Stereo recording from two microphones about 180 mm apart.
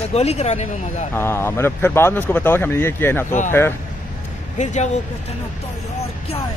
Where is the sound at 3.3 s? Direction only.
45° left (ahead or behind).